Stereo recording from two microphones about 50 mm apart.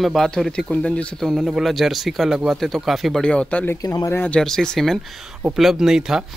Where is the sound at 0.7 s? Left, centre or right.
Left.